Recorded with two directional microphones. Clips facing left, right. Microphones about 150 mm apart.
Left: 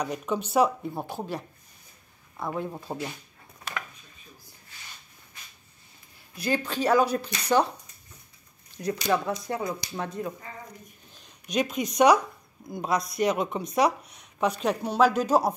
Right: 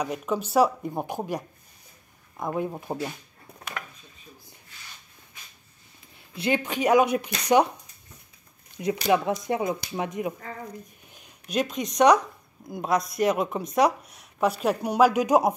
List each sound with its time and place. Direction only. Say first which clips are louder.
0.0 s speech: right 1 dB; centre (ahead or behind)
0.8 s speech: right 3 dB; 15° right (ahead or behind)
6.3 s speech: right 2 dB; 20° right (ahead or behind)
9.0 s speech: right 4 dB; 20° right (ahead or behind)